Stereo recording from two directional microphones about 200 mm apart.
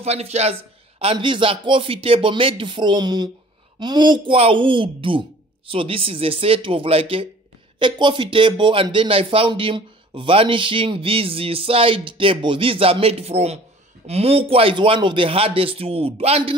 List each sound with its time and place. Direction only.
0.0 s speech: 30° right (ahead or behind)